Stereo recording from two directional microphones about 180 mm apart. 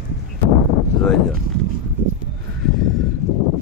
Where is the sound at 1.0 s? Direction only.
5° left (ahead or behind).